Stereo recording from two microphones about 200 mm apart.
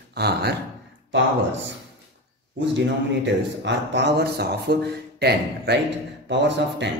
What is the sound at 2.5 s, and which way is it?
Speech, 65° right (ahead or behind).